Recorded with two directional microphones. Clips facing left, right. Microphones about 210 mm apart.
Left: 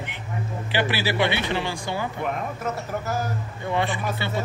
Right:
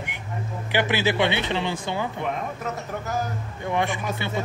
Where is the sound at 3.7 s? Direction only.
15° right (ahead or behind).